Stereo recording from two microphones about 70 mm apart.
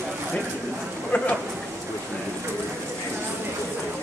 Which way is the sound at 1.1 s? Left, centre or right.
Centre.